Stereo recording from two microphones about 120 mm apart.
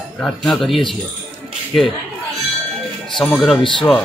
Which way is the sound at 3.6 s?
45° left (ahead or behind).